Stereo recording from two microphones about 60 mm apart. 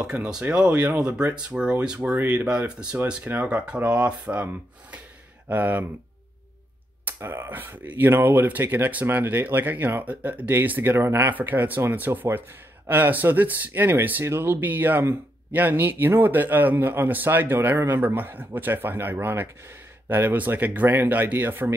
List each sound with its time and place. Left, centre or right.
0.0 s speech: centre
5.5 s speech: right
7.2 s speech: right